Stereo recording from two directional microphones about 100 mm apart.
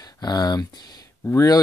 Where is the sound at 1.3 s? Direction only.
30° left (ahead or behind).